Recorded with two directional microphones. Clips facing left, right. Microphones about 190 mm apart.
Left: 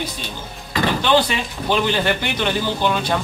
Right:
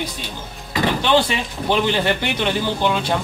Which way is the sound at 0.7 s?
25° right (ahead or behind).